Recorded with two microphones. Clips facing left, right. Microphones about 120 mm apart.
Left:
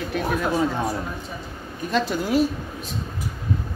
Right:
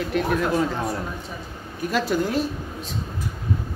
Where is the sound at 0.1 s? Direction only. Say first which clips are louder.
Right 1 dB; centre (ahead or behind).